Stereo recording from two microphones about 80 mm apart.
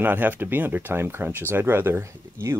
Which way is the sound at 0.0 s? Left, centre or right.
Right.